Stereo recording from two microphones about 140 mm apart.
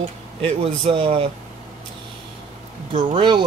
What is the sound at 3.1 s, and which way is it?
Speech, 35° right (ahead or behind).